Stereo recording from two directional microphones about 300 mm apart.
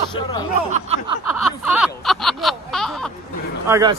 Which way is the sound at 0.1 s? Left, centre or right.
Centre.